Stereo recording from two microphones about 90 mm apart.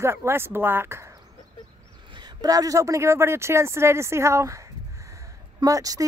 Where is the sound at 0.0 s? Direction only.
30° right (ahead or behind).